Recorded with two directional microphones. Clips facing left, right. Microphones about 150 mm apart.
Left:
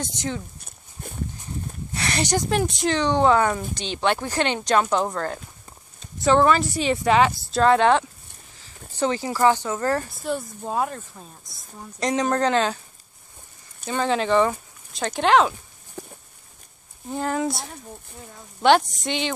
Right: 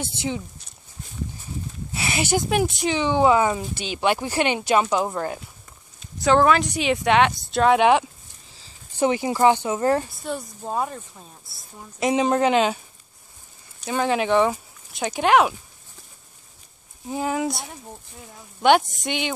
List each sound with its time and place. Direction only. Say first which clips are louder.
0.0 s speech: right 1 dB; 10° right (ahead or behind)
0.6 s walk: left 1 dB; 55° left (ahead or behind)
2.0 s speech: right 1 dB; 5° right (ahead or behind)
7.6 s speech: right 1 dB; 10° right (ahead or behind)
9.0 s speech: right 2 dB; 15° right (ahead or behind)
10.1 s speech: left 3 dB; centre (ahead or behind)
13.8 s speech: right 1 dB; 5° right (ahead or behind)
16.0 s a sound: left 17 dB; 50° left (ahead or behind)
17.1 s speech: even; 5° right (ahead or behind)